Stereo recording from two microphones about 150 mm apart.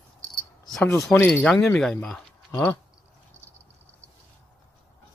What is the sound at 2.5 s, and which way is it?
Speech, 20° left (ahead or behind).